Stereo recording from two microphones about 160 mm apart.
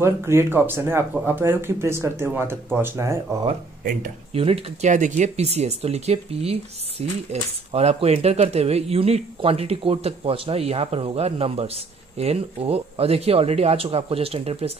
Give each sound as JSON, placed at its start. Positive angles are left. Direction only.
{"t": 0.0, "sound": "speech", "side_deg": -15}
{"t": 4.3, "sound": "speech", "side_deg": -35}